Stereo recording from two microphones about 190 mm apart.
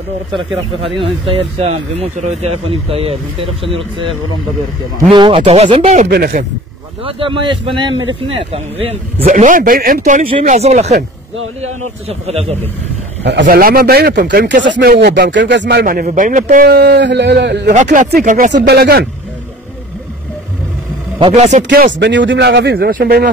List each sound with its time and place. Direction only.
0.9 s speech: 30° right (ahead or behind)
5.1 s speech: 25° right (ahead or behind)
6.0 s speech: 55° right (ahead or behind)
7.1 s speech: 25° right (ahead or behind)
9.2 s speech: 45° right (ahead or behind)
12.1 s speech: 30° right (ahead or behind)
13.2 s speech: 65° right (ahead or behind)
15.8 s speech: 50° right (ahead or behind); by 17.7 s 65° right (ahead or behind)
18.2 s speech: 40° right (ahead or behind)
18.5 s speech: 60° right (ahead or behind)
21.2 s speech: 35° right (ahead or behind)
21.9 s speech: 70° right (ahead or behind); by 23.3 s 55° right (ahead or behind)